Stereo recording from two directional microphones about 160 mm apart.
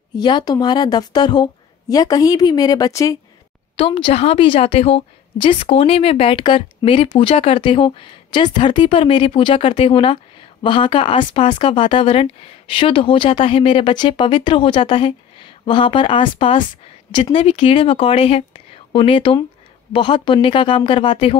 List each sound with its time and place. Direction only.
0.1 s speech: 25° left (ahead or behind)
3.7 s speech: 35° left (ahead or behind)